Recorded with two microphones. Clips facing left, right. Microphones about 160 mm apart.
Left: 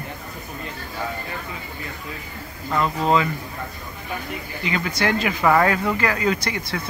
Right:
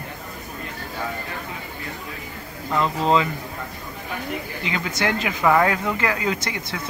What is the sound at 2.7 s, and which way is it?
Speech, 10° left (ahead or behind).